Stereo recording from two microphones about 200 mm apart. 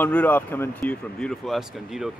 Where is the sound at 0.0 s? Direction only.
10° left (ahead or behind).